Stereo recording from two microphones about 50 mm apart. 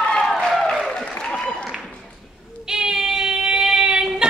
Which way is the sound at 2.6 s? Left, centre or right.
Centre.